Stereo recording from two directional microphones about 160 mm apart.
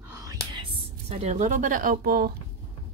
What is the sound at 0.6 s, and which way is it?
A woman's voice, 40° right (ahead or behind).